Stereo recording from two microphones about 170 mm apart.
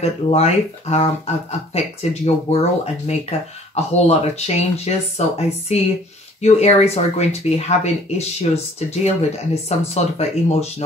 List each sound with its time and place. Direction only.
0.0 s speech: 40° left (ahead or behind)